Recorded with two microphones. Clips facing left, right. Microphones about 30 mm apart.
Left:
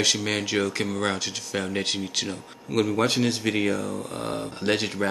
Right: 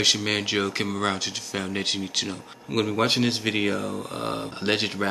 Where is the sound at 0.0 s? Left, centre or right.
Centre.